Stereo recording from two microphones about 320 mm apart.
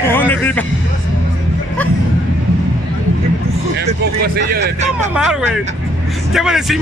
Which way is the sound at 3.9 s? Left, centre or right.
Right.